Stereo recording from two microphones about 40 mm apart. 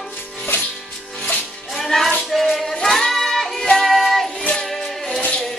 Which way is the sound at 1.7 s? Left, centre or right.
Centre.